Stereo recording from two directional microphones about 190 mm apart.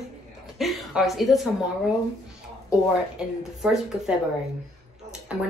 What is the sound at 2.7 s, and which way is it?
Speech, 5° right (ahead or behind).